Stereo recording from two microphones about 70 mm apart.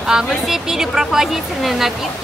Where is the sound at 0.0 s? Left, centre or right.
Centre.